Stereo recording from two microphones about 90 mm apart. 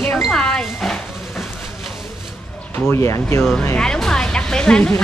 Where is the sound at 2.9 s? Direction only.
30° left (ahead or behind).